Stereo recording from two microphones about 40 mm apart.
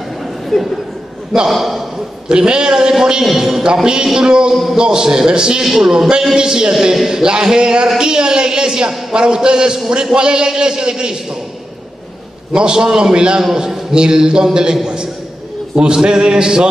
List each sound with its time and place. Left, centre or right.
0.5 s a man's voice: centre
2.2 s a man's voice: right
5.6 s a man's voice: centre
5.9 s a man's voice: centre
12.5 s a man's voice: centre